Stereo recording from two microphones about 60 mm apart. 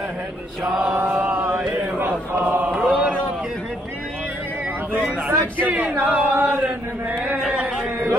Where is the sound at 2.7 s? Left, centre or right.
Centre.